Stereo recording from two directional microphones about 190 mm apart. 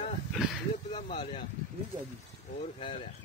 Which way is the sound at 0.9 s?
30° left (ahead or behind).